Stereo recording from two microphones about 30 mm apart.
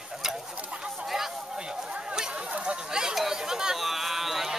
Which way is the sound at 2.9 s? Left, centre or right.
Right.